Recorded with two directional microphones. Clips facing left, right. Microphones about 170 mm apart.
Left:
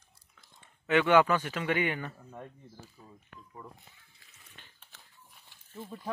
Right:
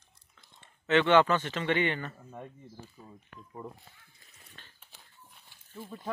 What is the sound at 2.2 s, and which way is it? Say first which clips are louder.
Speech: right 1 dB; 5° right (ahead or behind).